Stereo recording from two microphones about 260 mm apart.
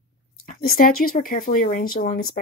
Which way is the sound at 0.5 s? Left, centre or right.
Left.